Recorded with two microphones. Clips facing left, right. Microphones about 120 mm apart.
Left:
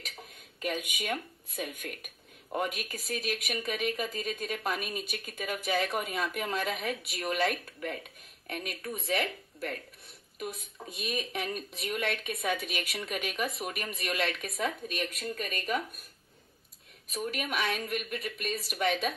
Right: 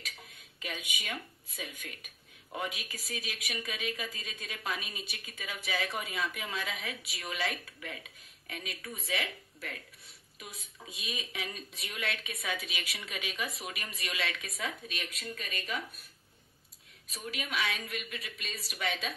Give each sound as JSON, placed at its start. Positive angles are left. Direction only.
{"t": 0.6, "sound": "speech", "side_deg": 50}
{"t": 17.1, "sound": "speech", "side_deg": 50}